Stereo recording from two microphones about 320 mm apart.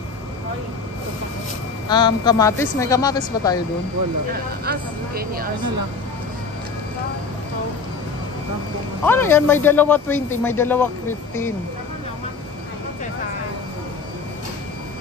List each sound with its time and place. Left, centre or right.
1.9 s a woman's voice: centre
4.3 s speech: right
9.0 s a woman's voice: centre